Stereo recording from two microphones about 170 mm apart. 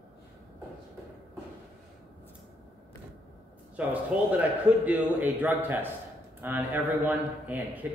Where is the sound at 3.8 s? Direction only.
10° right (ahead or behind).